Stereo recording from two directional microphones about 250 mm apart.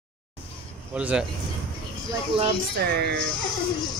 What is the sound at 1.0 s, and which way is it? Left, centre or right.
Speech, centre.